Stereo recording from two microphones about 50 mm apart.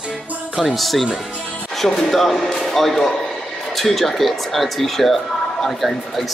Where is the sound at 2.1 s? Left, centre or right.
Centre.